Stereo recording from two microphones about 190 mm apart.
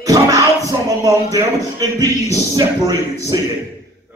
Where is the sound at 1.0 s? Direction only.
20° right (ahead or behind).